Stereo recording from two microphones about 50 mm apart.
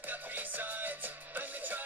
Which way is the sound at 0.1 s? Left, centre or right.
Right.